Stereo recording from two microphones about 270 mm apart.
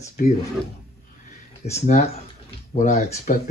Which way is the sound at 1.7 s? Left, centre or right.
Left.